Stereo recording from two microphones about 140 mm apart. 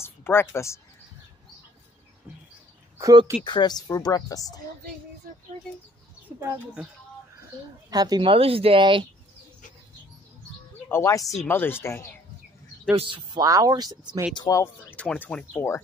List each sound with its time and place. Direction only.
0.0 s speech: 15° left (ahead or behind)
3.0 s speech: 25° right (ahead or behind)
3.4 s speech: 30° left (ahead or behind)
5.2 s speech: 80° right
6.3 s speech: 15° right (ahead or behind)
7.9 s speech: 30° right (ahead or behind)
10.9 s speech: 20° left (ahead or behind)
12.9 s speech: 35° right (ahead or behind)
14.3 s speech: 30° left (ahead or behind)
14.6 s speech: 15° left (ahead or behind)